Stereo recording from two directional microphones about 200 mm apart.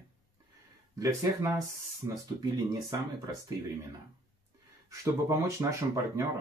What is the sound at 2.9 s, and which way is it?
Speech, 20° right (ahead or behind).